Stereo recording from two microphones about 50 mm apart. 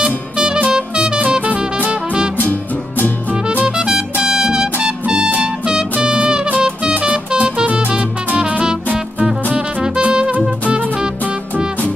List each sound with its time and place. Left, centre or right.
0.0 s music: centre
3.6 s music: centre